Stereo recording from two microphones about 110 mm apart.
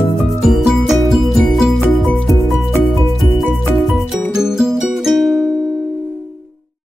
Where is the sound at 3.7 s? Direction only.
Centre (ahead or behind).